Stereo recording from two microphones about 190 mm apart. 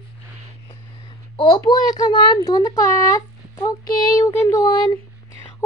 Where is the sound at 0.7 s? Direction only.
25° left (ahead or behind).